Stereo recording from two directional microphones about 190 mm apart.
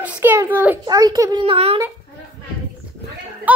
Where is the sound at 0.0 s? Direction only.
10° right (ahead or behind).